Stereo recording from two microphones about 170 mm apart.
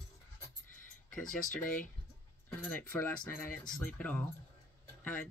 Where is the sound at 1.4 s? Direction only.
50° left (ahead or behind).